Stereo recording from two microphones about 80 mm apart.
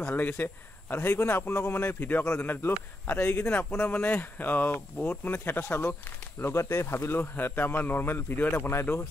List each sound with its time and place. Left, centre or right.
0.0 s a man's voice: left